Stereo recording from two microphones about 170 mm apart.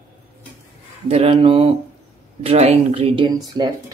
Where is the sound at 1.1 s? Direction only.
35° right (ahead or behind).